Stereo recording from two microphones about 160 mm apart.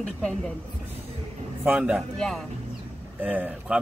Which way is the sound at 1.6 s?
10° right (ahead or behind).